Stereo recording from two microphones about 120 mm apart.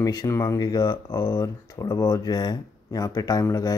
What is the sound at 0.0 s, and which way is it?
Speech, 35° left (ahead or behind).